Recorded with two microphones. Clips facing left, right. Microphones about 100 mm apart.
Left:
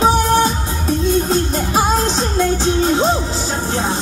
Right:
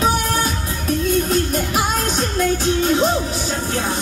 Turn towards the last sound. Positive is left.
turn(degrees=25)  # may be behind; listen again after turning